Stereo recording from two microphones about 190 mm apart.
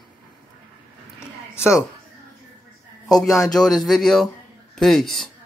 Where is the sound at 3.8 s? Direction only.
Centre (ahead or behind).